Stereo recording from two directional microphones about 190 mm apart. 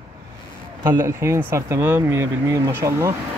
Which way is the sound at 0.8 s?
15° right (ahead or behind).